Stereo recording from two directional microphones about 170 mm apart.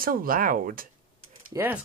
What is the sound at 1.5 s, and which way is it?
Speech, 10° right (ahead or behind).